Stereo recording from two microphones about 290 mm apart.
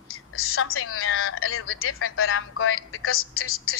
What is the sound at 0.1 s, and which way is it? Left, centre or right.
A woman's voice, left.